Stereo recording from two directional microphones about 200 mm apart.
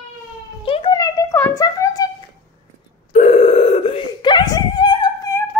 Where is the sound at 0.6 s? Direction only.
25° left (ahead or behind).